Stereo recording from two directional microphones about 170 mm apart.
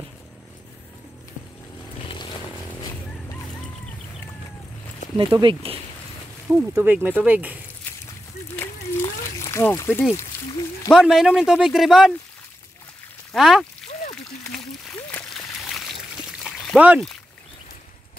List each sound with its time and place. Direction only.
5.1 s speech: 25° right (ahead or behind)
6.5 s speech: 10° right (ahead or behind)
7.8 s a sound: 10° left (ahead or behind)
10.9 s a man's voice: 5° right (ahead or behind)
13.3 s a man's voice: centre (ahead or behind)
14.1 s a sound: 5° left (ahead or behind)